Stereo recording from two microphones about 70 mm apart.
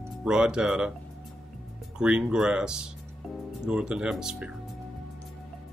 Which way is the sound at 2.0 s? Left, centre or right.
Centre.